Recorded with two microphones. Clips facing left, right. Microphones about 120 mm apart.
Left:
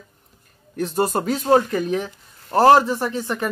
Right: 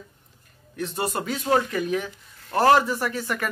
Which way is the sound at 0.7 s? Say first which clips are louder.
Left 6 dB; 40° left (ahead or behind).